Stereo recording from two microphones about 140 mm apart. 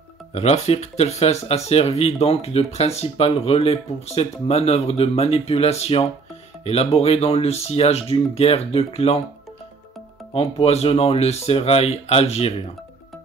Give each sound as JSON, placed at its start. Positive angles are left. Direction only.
{"t": 0.3, "sound": "speech", "side_deg": 50}
{"t": 10.3, "sound": "speech", "side_deg": 45}